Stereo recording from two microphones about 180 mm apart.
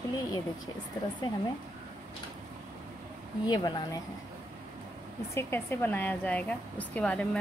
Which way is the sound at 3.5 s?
20° left (ahead or behind).